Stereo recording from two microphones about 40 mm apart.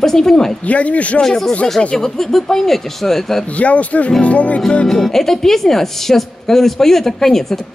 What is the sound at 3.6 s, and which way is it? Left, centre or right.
Speech, left.